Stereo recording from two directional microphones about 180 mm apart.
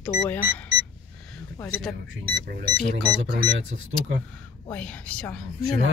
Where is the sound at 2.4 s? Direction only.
55° right (ahead or behind).